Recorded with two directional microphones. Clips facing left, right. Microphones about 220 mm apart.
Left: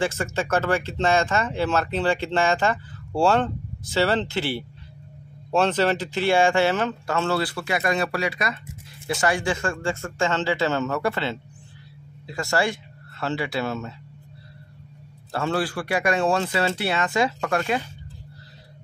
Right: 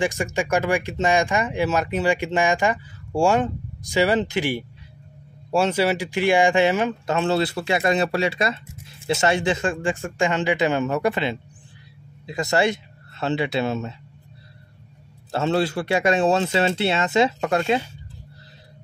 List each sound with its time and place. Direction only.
0.0 s speech: 15° right (ahead or behind)
15.3 s speech: 25° right (ahead or behind)